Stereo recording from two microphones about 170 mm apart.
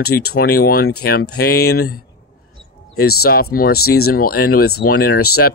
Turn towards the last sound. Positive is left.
turn(degrees=65)  # may be behind; listen again after turning